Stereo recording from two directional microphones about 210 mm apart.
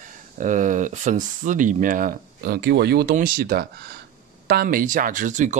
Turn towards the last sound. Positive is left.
turn(degrees=-35)  # may be behind; listen again after turning